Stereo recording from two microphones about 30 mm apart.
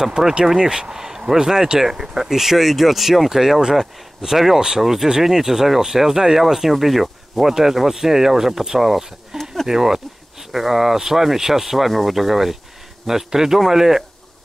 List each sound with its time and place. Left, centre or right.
0.2 s speech: centre
0.6 s speech: right; by 9.0 s centre
9.3 s a sound: centre
9.7 s speech: centre